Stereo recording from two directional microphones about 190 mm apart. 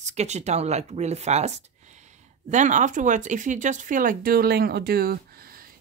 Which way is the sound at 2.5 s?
40° right (ahead or behind).